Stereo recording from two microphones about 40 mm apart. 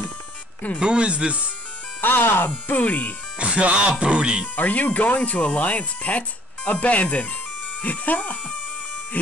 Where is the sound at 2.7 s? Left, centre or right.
Left.